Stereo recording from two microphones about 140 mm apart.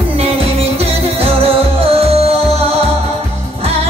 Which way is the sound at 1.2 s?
45° right (ahead or behind).